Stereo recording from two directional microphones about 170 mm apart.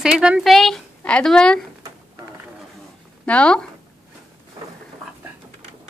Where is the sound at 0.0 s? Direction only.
5° right (ahead or behind).